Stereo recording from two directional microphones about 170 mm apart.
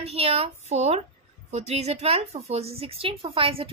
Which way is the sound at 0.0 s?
35° right (ahead or behind).